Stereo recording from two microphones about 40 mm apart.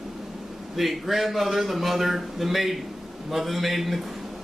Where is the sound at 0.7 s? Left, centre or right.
Centre.